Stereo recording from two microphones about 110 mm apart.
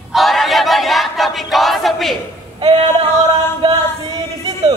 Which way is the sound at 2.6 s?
65° right (ahead or behind).